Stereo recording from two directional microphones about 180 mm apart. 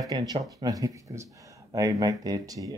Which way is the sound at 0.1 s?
20° right (ahead or behind).